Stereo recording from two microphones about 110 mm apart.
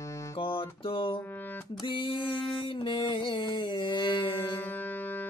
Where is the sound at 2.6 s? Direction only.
50° left (ahead or behind).